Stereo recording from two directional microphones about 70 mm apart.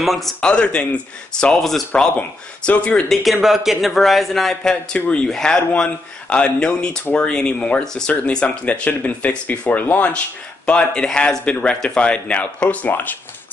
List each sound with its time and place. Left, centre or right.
0.0 s a man's voice: centre
0.4 s speech: centre
1.9 s speech: centre
3.1 s a man's voice: centre
4.9 s speech: left
5.2 s speech: centre
12.6 s speech: left